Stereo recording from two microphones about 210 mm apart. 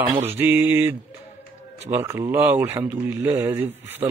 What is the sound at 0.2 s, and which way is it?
Speech, 10° right (ahead or behind).